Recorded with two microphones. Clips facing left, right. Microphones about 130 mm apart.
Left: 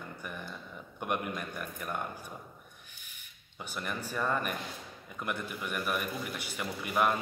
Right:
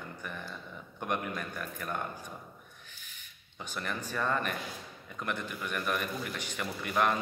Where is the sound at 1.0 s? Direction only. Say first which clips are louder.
Even; 10° left (ahead or behind).